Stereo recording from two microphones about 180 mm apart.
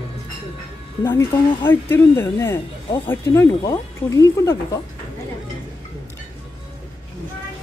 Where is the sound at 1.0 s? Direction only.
15° left (ahead or behind).